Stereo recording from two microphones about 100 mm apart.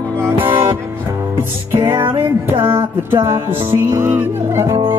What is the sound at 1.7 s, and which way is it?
Music, 20° right (ahead or behind).